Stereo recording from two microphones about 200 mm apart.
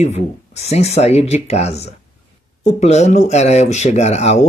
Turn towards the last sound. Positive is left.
turn(degrees=35)  # may be behind; listen again after turning